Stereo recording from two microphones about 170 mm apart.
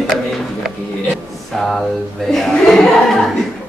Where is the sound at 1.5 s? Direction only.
Centre (ahead or behind).